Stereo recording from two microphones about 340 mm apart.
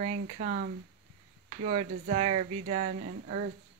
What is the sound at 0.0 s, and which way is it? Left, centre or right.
Speech, centre.